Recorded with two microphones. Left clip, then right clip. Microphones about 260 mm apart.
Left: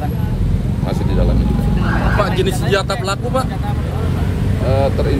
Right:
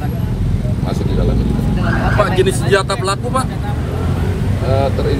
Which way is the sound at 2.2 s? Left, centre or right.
Right.